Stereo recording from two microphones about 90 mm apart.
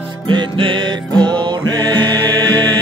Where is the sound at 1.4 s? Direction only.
55° right (ahead or behind).